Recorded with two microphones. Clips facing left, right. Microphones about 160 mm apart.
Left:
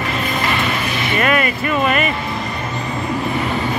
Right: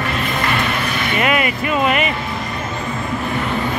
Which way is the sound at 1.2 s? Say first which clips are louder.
Left 1 dB; 15° right (ahead or behind).